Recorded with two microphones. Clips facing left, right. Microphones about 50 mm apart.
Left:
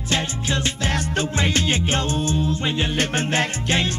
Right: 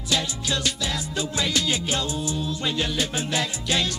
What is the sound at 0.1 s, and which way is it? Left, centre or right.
Music, left.